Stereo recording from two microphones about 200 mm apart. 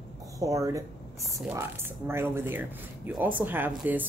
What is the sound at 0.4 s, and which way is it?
A woman's voice, 15° right (ahead or behind).